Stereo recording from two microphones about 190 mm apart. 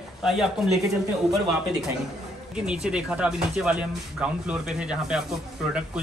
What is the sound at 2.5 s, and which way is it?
Speech, 5° right (ahead or behind).